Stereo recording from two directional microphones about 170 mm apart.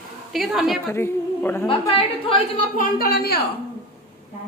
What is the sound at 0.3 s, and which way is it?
Speech, centre (ahead or behind).